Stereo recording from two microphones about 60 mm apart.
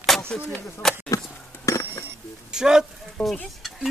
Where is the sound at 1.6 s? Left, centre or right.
Left.